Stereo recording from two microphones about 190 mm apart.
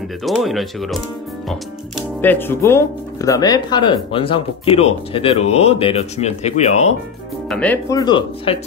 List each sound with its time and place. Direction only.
0.2 s speech: centre (ahead or behind); by 7.0 s 35° left (ahead or behind)
7.4 s speech: 5° left (ahead or behind)
8.0 s speech: 25° left (ahead or behind)